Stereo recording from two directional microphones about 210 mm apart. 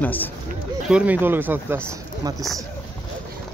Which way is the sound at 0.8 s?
5° right (ahead or behind).